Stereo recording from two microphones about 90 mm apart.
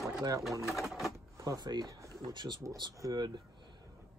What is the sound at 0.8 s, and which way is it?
Speech, centre (ahead or behind).